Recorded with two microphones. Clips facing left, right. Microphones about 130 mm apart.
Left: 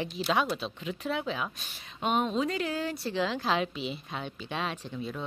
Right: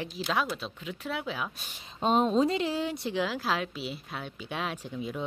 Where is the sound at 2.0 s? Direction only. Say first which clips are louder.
Right 4 dB; 30° right (ahead or behind).